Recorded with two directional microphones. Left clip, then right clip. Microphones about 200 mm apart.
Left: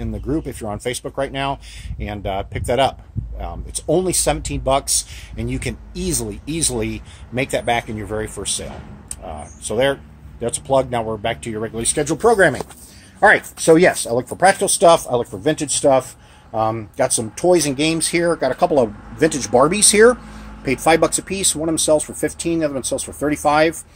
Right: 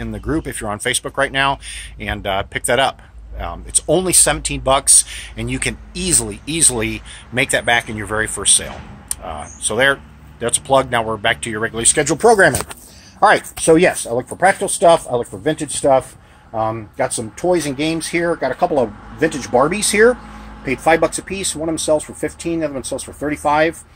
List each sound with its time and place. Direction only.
0.0 s speech: centre (ahead or behind)
12.0 s speech: 30° right (ahead or behind)
13.7 s speech: centre (ahead or behind)
14.0 s speech: 15° left (ahead or behind)